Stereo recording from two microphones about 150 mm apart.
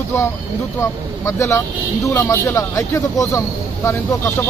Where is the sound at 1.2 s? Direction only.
20° left (ahead or behind).